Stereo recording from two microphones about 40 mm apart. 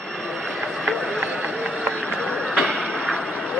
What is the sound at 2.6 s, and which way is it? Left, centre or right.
Train, left.